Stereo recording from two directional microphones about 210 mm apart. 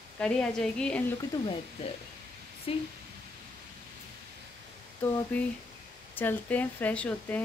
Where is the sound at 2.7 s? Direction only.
25° left (ahead or behind).